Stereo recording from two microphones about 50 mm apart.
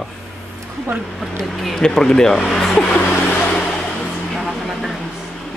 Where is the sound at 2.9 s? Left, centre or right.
Left.